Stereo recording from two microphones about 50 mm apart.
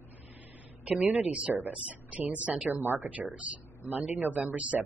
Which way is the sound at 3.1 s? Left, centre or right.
Right.